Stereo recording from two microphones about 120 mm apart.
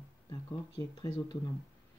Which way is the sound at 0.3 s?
30° left (ahead or behind).